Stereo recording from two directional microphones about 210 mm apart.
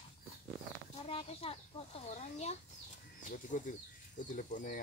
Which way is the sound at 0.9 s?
30° left (ahead or behind).